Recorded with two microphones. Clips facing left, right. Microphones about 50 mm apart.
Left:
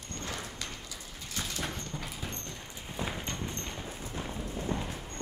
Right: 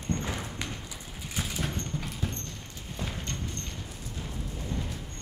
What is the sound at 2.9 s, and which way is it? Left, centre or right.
Clip-clop, centre.